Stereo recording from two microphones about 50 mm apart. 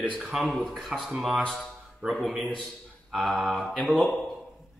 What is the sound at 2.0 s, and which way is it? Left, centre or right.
Speech, centre.